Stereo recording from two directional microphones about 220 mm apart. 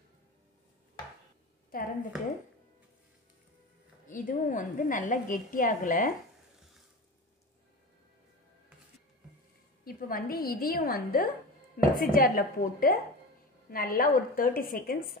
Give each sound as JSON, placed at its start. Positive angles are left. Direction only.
{"t": 1.7, "sound": "a sound", "side_deg": 40}
{"t": 4.1, "sound": "a woman's voice", "side_deg": 35}
{"t": 9.8, "sound": "a woman's voice", "side_deg": 40}